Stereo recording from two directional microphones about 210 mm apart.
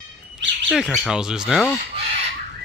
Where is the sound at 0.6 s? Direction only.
Centre (ahead or behind).